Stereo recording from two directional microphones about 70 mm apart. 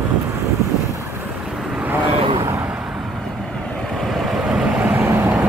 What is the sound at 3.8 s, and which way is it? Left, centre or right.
Vehicle, centre.